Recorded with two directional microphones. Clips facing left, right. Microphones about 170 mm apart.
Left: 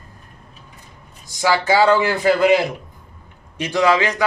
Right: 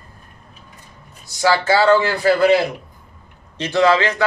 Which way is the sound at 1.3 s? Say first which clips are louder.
Right 1 dB; 15° left (ahead or behind).